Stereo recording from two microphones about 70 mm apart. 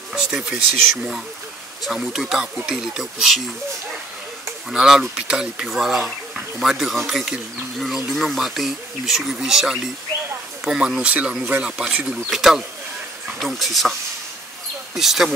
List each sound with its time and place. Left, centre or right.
0.1 s speech: centre
1.9 s speech: centre
4.6 s speech: centre
12.3 s speech: centre
15.0 s speech: centre